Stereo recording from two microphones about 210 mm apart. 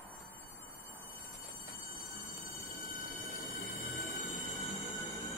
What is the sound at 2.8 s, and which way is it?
Train, 40° left (ahead or behind).